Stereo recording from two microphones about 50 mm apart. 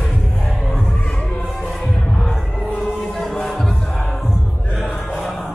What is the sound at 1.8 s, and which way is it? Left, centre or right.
Heart sounds, centre.